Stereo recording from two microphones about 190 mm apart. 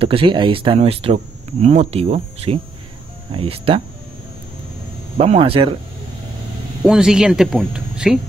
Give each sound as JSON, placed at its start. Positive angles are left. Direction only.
{"t": 0.0, "sound": "speech", "side_deg": -30}
{"t": 5.2, "sound": "speech", "side_deg": -30}
{"t": 6.8, "sound": "speech", "side_deg": -5}